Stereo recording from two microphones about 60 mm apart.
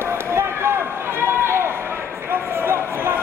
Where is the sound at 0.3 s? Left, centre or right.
Right.